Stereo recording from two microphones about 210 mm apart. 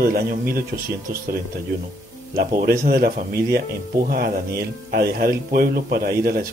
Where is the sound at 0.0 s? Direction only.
45° right (ahead or behind).